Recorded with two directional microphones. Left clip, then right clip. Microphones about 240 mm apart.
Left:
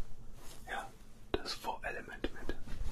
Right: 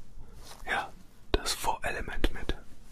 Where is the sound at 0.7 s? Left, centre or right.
Right.